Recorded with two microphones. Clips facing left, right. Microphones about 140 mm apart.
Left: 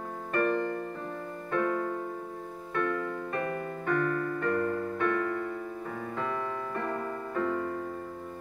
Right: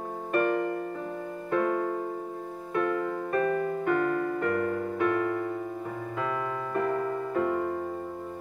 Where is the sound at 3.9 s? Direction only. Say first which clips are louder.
Right 1 dB; 30° right (ahead or behind).